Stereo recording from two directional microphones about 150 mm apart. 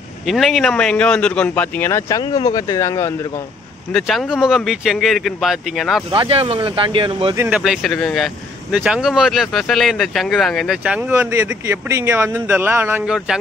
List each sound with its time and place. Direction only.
0.3 s speech: centre (ahead or behind); by 3.2 s 20° left (ahead or behind)
3.9 s speech: centre (ahead or behind)
6.1 s speech: 35° right (ahead or behind)
7.4 s speech: 5° right (ahead or behind)
10.8 s speech: 10° right (ahead or behind)